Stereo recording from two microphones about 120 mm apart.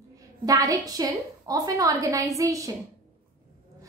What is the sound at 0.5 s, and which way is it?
A woman's voice, 30° right (ahead or behind).